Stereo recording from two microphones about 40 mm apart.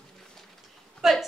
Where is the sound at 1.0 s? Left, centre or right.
Centre.